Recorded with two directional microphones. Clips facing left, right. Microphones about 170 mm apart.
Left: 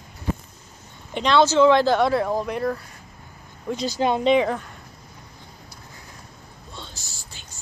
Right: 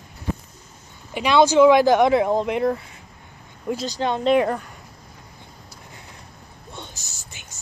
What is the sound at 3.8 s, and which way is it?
Speech, 10° left (ahead or behind).